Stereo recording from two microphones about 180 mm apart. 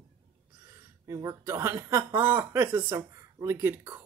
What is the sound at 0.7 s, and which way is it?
A woman's voice, 15° right (ahead or behind).